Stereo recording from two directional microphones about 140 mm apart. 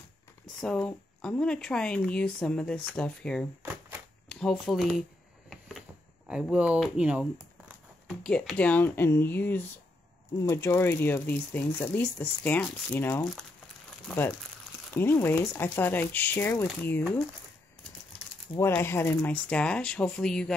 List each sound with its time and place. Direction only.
0.6 s speech: 5° left (ahead or behind)
6.2 s speech: 5° right (ahead or behind)
8.1 s speech: 5° left (ahead or behind)
15.0 s speech: 15° left (ahead or behind)
18.6 s speech: 15° left (ahead or behind)